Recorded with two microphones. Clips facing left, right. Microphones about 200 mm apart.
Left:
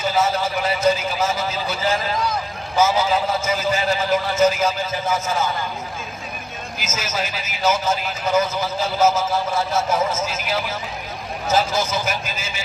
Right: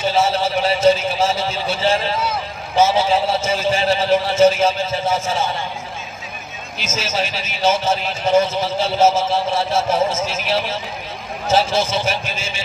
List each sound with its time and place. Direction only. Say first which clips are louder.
0.0 s a sound: right 3 dB; 30° right (ahead or behind)
2.7 s a man's voice: right 3 dB; 30° right (ahead or behind)
6.8 s a man's voice: right 4 dB; 30° right (ahead or behind)